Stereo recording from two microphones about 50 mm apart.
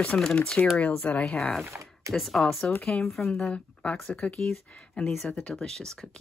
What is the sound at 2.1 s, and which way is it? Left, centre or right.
Speech, centre.